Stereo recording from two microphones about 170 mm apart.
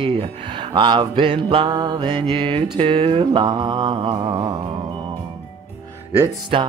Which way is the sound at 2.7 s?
35° right (ahead or behind).